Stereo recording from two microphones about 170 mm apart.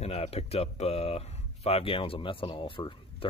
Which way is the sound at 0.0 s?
35° left (ahead or behind).